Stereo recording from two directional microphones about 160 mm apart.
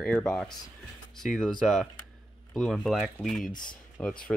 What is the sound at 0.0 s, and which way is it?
Speech, 5° left (ahead or behind).